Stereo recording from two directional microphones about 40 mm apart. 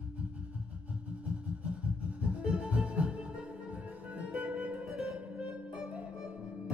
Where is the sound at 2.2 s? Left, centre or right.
Right.